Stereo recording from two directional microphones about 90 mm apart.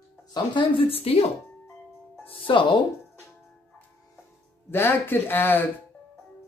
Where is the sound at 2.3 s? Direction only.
65° left (ahead or behind).